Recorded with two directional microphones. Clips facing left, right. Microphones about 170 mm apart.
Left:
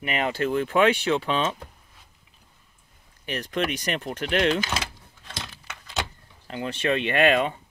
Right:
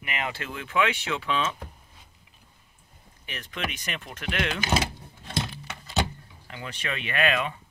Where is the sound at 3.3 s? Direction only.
40° left (ahead or behind).